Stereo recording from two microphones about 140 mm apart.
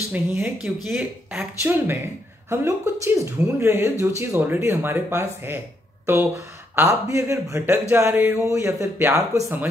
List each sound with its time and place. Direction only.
0.1 s speech: 10° right (ahead or behind)
1.6 s speech: 15° right (ahead or behind)